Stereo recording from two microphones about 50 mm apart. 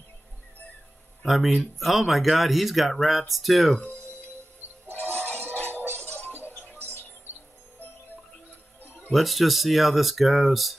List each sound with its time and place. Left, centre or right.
1.2 s speech: centre
5.3 s music: right
9.1 s speech: centre